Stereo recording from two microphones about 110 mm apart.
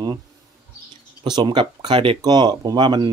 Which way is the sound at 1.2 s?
40° right (ahead or behind).